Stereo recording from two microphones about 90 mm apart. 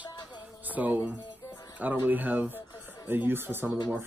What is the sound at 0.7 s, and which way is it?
Speech, 20° right (ahead or behind).